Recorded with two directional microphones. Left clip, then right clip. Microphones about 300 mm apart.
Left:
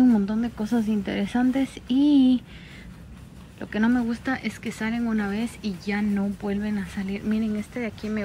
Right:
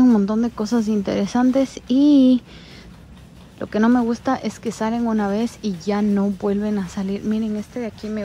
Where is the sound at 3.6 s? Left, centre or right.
Left.